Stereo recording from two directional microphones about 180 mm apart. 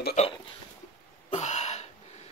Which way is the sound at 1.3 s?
40° left (ahead or behind).